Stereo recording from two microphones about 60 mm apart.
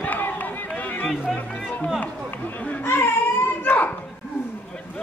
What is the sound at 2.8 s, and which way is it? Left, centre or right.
Baby cry, left.